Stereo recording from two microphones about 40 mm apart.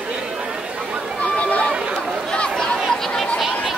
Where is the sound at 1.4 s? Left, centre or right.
Left.